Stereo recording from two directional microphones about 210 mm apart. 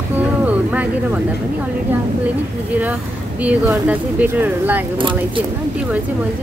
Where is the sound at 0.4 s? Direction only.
5° right (ahead or behind).